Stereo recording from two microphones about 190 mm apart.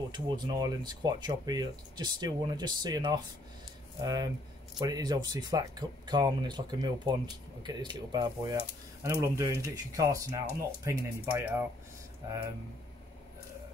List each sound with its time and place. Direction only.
0.1 s speech: 20° right (ahead or behind)